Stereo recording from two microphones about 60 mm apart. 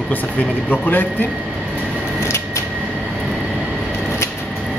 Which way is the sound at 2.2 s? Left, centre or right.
Left.